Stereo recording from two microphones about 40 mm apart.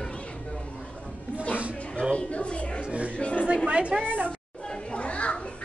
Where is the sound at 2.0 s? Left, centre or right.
Left.